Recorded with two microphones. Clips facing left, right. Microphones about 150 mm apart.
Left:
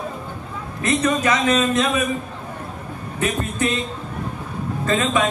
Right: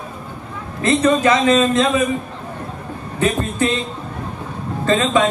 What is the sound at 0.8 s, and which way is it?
Speech, 30° right (ahead or behind).